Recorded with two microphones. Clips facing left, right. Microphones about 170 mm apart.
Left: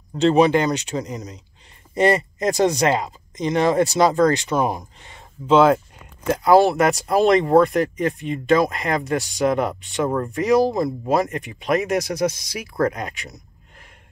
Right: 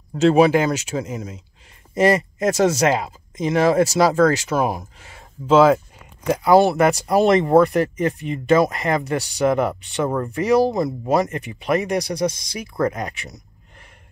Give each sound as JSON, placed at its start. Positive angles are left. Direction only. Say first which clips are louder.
{"t": 0.2, "sound": "speech", "louder": "right 1 dB", "side_deg": -5}